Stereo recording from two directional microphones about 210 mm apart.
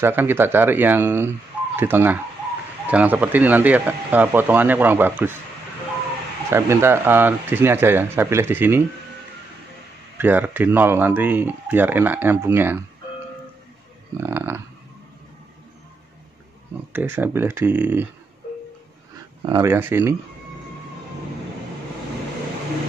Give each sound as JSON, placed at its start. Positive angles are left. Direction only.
{"t": 0.0, "sound": "speech", "side_deg": -10}
{"t": 6.5, "sound": "speech", "side_deg": -10}
{"t": 10.1, "sound": "speech", "side_deg": -10}
{"t": 14.1, "sound": "speech", "side_deg": -10}
{"t": 16.9, "sound": "speech", "side_deg": -10}
{"t": 19.4, "sound": "speech", "side_deg": -15}